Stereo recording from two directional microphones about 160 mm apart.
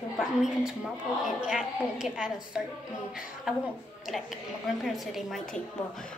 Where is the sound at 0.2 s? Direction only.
5° right (ahead or behind).